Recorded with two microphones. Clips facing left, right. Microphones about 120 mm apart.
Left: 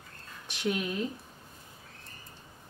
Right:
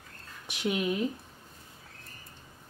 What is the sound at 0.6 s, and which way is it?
Speech, 10° right (ahead or behind).